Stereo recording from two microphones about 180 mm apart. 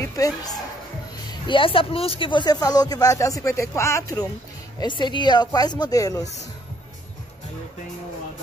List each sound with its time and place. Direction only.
0.0 s speech: 20° left (ahead or behind)